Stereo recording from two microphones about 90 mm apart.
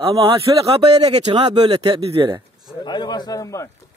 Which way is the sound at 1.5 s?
55° right (ahead or behind).